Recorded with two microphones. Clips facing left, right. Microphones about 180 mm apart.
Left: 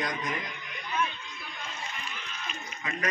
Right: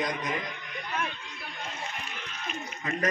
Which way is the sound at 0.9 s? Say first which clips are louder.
Left 3 dB; 65° right (ahead or behind).